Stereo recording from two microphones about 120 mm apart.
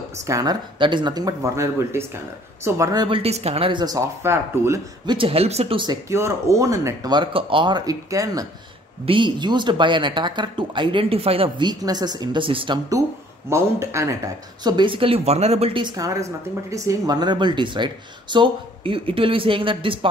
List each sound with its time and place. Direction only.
0.3 s speech: 30° right (ahead or behind)
0.7 s speech: 40° right (ahead or behind)
3.1 s a woman's voice: 60° right (ahead or behind)
4.2 s speech: 20° right (ahead or behind)
5.0 s speech: 45° right (ahead or behind)
6.0 s speech: 25° right (ahead or behind)
9.0 s speech: 45° right (ahead or behind)
13.5 s speech: 25° right (ahead or behind); by 15.8 s 60° right (ahead or behind)
15.8 s speech: 30° right (ahead or behind)